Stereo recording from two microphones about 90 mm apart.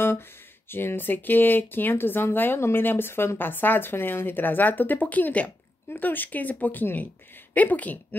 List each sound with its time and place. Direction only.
0.7 s speech: 25° left (ahead or behind)